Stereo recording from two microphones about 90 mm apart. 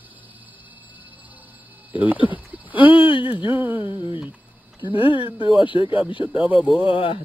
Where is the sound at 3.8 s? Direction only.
60° left (ahead or behind).